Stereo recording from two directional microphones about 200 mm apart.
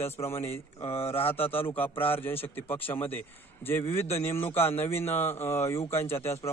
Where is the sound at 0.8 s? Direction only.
30° left (ahead or behind).